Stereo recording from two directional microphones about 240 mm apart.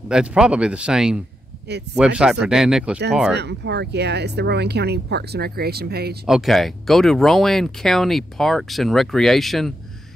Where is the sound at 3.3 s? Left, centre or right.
Right.